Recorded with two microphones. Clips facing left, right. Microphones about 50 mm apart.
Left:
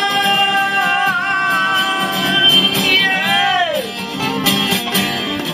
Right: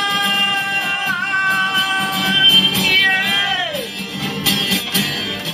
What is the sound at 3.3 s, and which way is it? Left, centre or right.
Music, centre.